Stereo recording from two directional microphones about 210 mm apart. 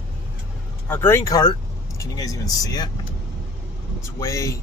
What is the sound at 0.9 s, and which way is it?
Speech, 10° left (ahead or behind).